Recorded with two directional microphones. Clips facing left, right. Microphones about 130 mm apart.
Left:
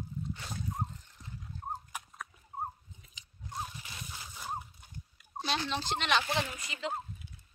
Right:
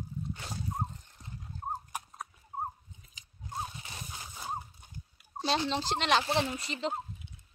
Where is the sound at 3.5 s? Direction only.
25° right (ahead or behind).